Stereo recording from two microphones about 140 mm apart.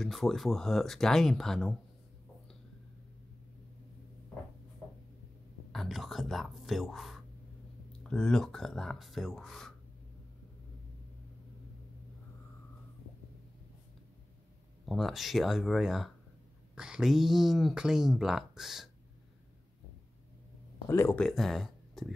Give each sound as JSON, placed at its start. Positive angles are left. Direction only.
{"t": 0.0, "sound": "speech", "side_deg": 0}
{"t": 5.7, "sound": "speech", "side_deg": 0}
{"t": 14.9, "sound": "speech", "side_deg": 0}
{"t": 20.9, "sound": "speech", "side_deg": 20}
{"t": 21.2, "sound": "speech", "side_deg": 0}